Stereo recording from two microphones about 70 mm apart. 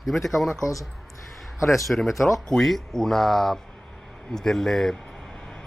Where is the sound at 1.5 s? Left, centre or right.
Left.